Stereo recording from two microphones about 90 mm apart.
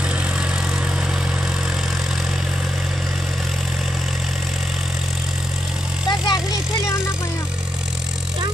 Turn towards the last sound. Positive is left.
turn(degrees=50)  # may be behind; listen again after turning